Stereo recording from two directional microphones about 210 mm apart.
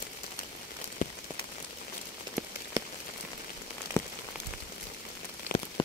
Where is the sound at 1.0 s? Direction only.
40° left (ahead or behind).